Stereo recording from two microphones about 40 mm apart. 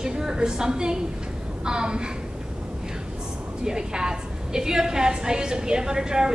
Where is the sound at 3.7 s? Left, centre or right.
Centre.